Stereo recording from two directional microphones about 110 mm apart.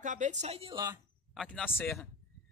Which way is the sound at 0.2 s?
90° right.